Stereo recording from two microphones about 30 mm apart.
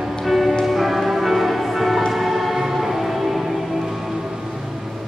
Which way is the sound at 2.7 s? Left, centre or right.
Centre.